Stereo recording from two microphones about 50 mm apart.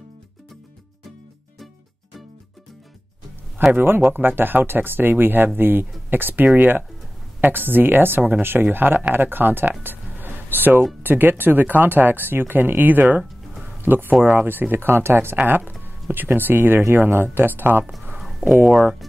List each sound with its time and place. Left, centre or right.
3.7 s speech: right
18.7 s speech: centre